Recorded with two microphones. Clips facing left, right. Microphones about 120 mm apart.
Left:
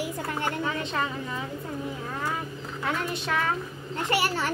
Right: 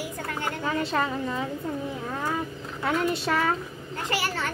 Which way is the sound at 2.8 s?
35° right (ahead or behind).